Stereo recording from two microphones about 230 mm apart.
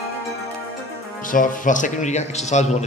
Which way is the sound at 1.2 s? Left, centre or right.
Left.